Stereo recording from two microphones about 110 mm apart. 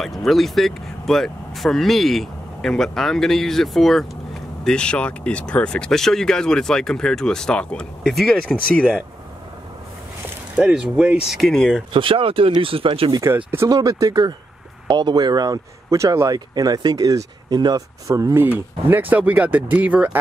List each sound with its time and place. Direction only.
0.0 s speech: centre (ahead or behind)
10.5 s speech: 10° right (ahead or behind)
11.9 s speech: 50° right (ahead or behind)
13.7 s speech: 35° right (ahead or behind)
18.4 s speech: 20° right (ahead or behind)